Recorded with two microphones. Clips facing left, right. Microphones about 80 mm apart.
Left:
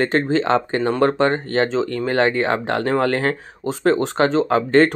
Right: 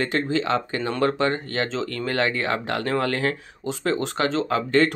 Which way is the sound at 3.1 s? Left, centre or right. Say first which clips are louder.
Left 4 dB; left.